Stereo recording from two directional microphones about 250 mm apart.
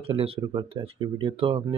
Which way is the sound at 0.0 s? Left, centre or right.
Right.